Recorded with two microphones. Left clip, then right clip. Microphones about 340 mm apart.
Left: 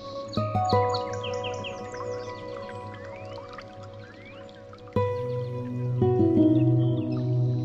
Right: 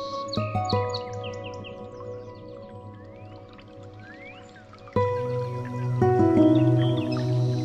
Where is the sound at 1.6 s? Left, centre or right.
Left.